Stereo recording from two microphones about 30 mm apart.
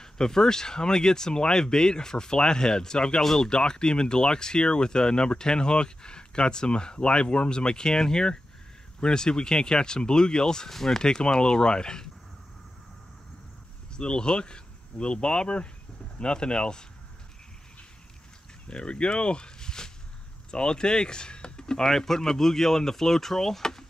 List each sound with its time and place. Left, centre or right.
0.0 s speech: centre
10.7 s speech: centre
11.0 s speech: left
13.9 s speech: left
18.7 s speech: left; by 23.6 s centre
23.6 s drawer open or close: centre